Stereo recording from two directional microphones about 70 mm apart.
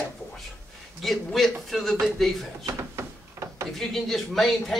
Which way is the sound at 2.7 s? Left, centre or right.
Right.